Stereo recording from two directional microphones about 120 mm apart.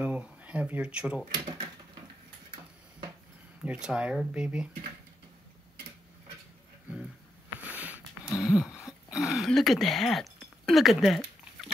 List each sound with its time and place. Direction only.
0.0 s speech: 10° right (ahead or behind)
1.3 s speech: 40° right (ahead or behind)
3.6 s speech: 10° right (ahead or behind)
7.6 s a sound: 15° right (ahead or behind)